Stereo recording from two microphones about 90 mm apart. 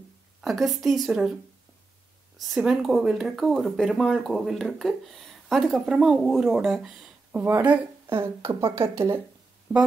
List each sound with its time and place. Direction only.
0.4 s speech: centre (ahead or behind)
2.3 s speech: centre (ahead or behind)
5.9 s speech: 10° right (ahead or behind)
7.6 s speech: 20° right (ahead or behind)